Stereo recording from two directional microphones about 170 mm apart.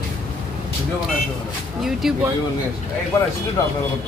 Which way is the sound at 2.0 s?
Centre (ahead or behind).